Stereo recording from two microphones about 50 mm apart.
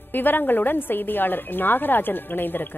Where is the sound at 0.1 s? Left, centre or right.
Left.